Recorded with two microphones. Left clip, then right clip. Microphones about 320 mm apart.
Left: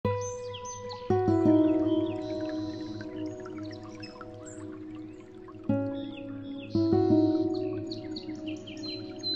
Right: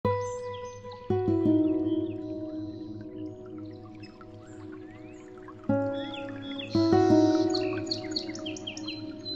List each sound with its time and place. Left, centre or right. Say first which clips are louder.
0.2 s music: right 2 dB; centre
2.4 s music: left 3 dB; left
5.7 s music: right 3 dB; centre
6.5 s music: right 3 dB; right